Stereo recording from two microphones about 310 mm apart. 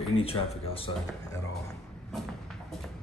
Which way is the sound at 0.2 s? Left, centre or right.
Centre.